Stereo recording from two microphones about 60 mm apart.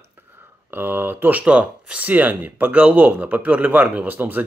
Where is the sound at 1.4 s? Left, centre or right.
Centre.